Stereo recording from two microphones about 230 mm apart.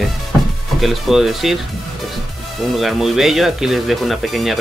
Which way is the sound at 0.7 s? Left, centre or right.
Centre.